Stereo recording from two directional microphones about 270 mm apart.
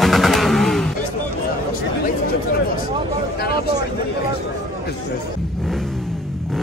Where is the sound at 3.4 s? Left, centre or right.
Left.